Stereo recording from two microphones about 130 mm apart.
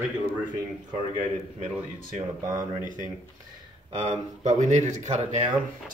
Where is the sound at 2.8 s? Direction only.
80° right.